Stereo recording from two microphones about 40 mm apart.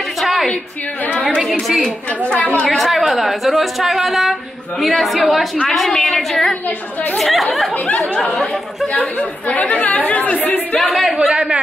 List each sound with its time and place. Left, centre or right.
0.2 s a sound: centre
1.1 s chatter: centre
2.2 s speech: left
2.6 s a woman's voice: centre
9.5 s speech: left
10.8 s a woman's voice: centre
11.3 s a sound: centre